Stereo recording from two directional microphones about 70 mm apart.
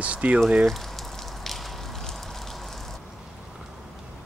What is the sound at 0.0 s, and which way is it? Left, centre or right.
Speech, centre.